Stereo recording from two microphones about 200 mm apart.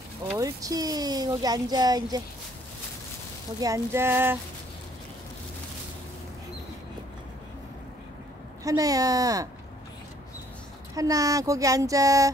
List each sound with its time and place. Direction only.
0.4 s speech: 15° right (ahead or behind)
3.6 s child singing: 15° right (ahead or behind)
8.6 s child singing: 15° right (ahead or behind)
11.0 s child singing: 15° right (ahead or behind)